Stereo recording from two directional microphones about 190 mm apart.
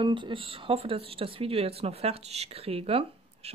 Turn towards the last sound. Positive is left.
turn(degrees=-30)  # may be behind; listen again after turning